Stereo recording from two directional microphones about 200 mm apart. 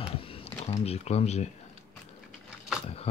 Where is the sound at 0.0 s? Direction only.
30° left (ahead or behind).